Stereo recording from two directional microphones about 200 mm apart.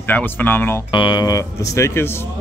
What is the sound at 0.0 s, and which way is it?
Speech, 10° left (ahead or behind).